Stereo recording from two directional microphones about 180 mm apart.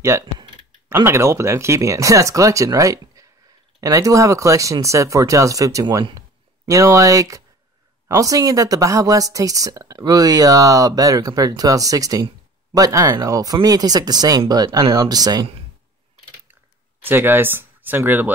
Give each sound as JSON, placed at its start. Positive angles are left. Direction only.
{"t": 0.0, "sound": "a sound", "side_deg": -15}
{"t": 0.8, "sound": "speech", "side_deg": -15}
{"t": 17.0, "sound": "speech", "side_deg": -10}